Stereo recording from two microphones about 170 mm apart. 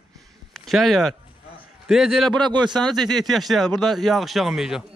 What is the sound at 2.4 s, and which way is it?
Speech, 25° right (ahead or behind).